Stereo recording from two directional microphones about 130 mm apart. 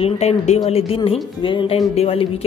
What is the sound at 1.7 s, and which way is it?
Speech, 55° left (ahead or behind).